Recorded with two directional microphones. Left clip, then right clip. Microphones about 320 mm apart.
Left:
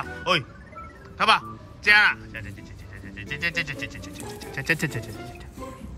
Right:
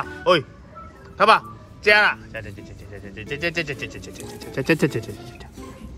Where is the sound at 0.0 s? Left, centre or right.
Centre.